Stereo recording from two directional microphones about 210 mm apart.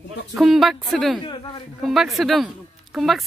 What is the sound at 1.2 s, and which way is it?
Speech, 25° left (ahead or behind).